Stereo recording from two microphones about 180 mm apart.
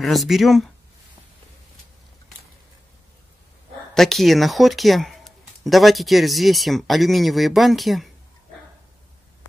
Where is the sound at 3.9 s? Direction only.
Centre (ahead or behind).